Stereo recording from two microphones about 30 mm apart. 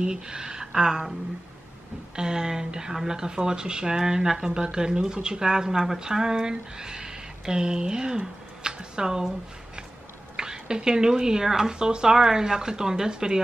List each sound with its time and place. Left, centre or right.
0.0 s speech: right
2.1 s speech: right
10.3 s speech: right